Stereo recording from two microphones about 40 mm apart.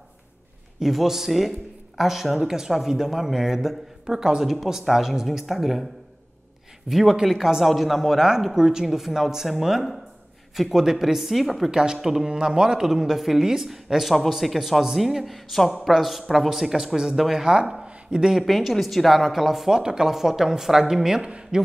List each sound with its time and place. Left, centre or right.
0.7 s speech: centre
6.9 s speech: centre
11.7 s speech: centre
12.8 s speech: centre
17.6 s a sound: centre
18.4 s speech: centre
19.7 s speech: centre